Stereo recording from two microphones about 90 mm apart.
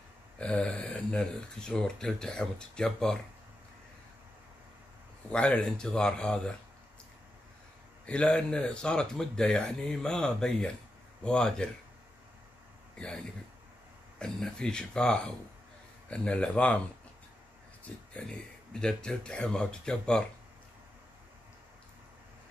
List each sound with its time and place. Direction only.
0.4 s speech: 10° left (ahead or behind)
5.3 s speech: 10° left (ahead or behind)
8.1 s speech: 10° left (ahead or behind)
12.9 s speech: 10° left (ahead or behind)
17.8 s speech: 10° left (ahead or behind)